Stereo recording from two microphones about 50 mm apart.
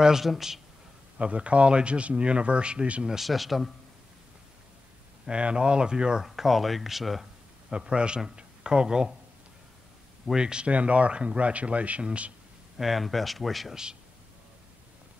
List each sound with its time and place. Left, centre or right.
0.0 s speech: centre
1.1 s speech: right
3.2 s speech: centre
5.3 s speech: centre
6.2 s speech: centre
7.7 s speech: centre
10.3 s speech: centre
12.7 s speech: centre